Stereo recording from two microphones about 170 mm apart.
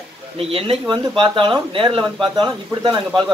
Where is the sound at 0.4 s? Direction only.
35° right (ahead or behind).